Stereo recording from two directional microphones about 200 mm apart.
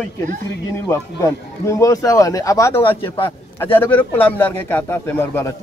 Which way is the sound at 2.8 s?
25° left (ahead or behind).